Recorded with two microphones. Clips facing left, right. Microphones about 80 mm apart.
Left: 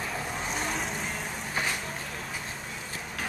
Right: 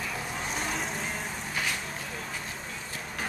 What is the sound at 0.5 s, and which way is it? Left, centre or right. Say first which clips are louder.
Vehicle: even; centre.